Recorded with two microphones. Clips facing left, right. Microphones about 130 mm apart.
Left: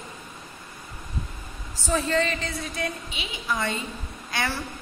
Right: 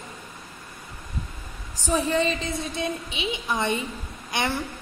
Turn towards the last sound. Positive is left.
turn(degrees=-20)  # may be behind; listen again after turning